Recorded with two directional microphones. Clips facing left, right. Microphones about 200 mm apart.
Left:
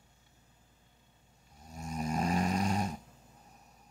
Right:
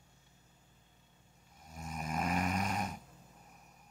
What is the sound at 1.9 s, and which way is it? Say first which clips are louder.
Snoring: left 4 dB; 35° left (ahead or behind).